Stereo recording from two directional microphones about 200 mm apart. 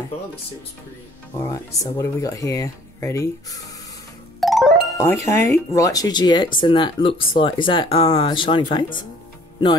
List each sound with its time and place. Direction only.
1.5 s speech: 15° left (ahead or behind)
4.4 s music: centre (ahead or behind)
4.9 s speech: 15° left (ahead or behind)